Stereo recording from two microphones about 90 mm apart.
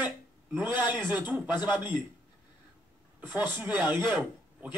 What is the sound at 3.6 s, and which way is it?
Speech, 20° right (ahead or behind).